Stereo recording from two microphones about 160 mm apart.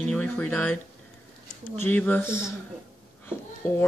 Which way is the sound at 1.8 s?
10° left (ahead or behind).